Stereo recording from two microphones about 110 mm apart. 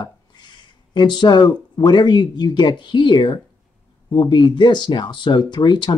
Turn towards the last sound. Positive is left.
turn(degrees=45)  # may be behind; listen again after turning